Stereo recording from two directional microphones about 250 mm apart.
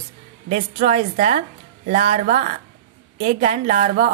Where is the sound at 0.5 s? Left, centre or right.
Right.